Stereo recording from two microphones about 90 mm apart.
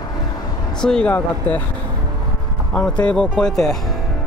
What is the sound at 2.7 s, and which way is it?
Speech, 10° left (ahead or behind).